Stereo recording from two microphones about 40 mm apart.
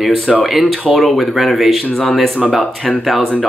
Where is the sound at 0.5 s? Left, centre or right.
Centre.